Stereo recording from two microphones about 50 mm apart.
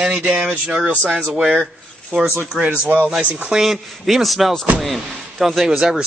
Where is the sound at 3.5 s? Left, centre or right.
Centre.